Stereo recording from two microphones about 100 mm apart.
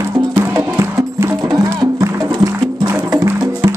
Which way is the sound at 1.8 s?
40° right (ahead or behind).